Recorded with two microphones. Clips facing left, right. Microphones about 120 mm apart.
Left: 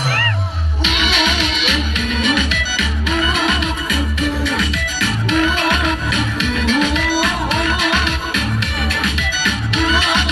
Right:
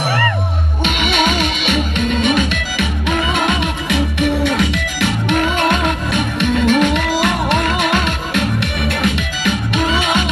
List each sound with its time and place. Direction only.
0.8 s music: 55° right (ahead or behind)